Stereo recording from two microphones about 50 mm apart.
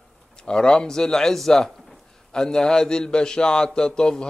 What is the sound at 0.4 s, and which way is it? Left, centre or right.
A man's voice, centre.